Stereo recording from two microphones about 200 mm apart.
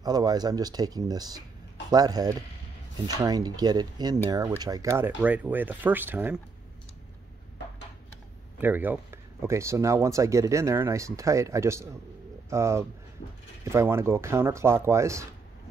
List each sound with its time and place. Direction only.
0.0 s speech: 20° right (ahead or behind)
8.5 s speech: 10° right (ahead or behind)